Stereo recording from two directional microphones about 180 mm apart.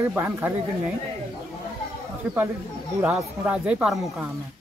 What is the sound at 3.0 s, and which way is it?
Speech, 5° right (ahead or behind).